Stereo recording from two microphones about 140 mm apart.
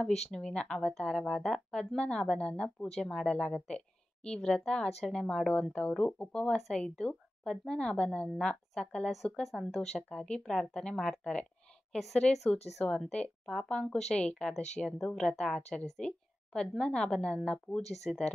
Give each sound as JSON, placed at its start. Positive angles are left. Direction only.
{"t": 0.3, "sound": "a woman's voice", "side_deg": 5}